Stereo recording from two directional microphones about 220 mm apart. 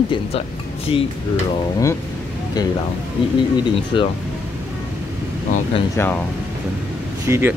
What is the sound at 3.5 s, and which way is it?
Speech, 20° left (ahead or behind).